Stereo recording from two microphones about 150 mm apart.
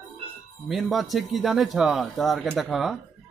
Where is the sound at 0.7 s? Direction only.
Centre (ahead or behind).